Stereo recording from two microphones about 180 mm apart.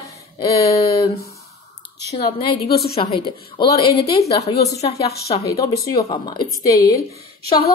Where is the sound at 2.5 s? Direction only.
60° left (ahead or behind).